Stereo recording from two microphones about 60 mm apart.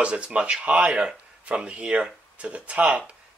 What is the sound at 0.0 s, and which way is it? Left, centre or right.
Speech, centre.